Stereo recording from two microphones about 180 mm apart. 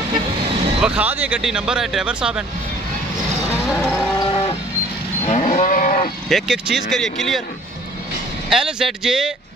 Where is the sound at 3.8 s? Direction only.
5° left (ahead or behind).